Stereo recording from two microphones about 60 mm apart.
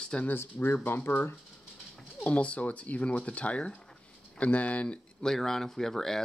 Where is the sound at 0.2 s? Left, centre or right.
Left.